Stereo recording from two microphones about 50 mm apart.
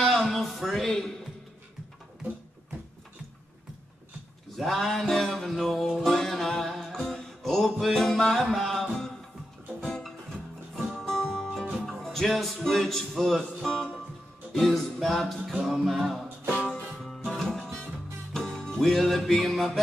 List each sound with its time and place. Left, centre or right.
0.0 s a sound: centre
4.6 s music: centre
9.8 s music: centre
16.5 s music: left
17.0 s music: centre